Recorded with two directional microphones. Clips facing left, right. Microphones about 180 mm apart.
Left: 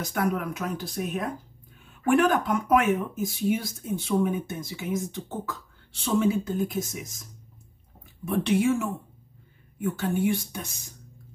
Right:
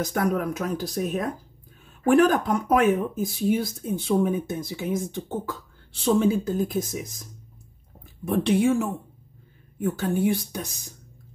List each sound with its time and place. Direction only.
0.0 s speech: 40° right (ahead or behind)
8.3 s speech: 35° right (ahead or behind)